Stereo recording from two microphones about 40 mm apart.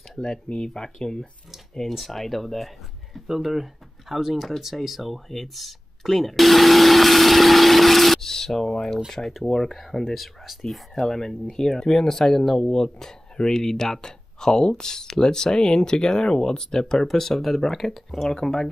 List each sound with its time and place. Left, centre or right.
0.5 s speech: left
1.9 s speech: centre
10.7 s speech: centre